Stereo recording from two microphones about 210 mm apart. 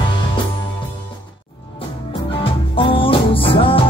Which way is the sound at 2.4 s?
25° left (ahead or behind).